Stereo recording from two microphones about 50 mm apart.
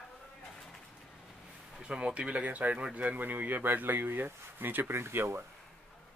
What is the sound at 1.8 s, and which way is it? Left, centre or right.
Speech, centre.